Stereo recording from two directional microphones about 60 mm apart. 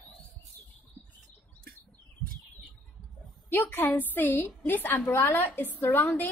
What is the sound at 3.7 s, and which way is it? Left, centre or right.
A woman's voice, left.